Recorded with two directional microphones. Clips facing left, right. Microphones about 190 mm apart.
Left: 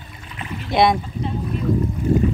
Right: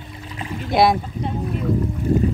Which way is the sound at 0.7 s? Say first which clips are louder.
Even; 5° right (ahead or behind).